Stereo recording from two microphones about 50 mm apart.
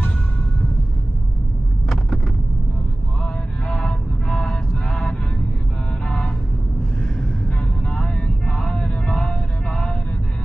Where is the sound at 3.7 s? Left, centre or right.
Centre.